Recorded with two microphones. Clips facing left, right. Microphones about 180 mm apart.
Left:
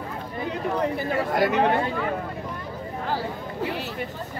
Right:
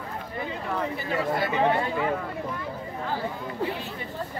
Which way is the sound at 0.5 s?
75° left (ahead or behind).